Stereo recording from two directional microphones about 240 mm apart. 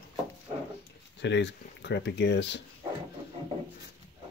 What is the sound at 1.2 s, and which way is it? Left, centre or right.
Speech, left.